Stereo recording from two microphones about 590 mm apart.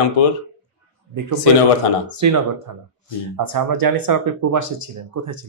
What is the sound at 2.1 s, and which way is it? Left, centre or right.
Speech, right.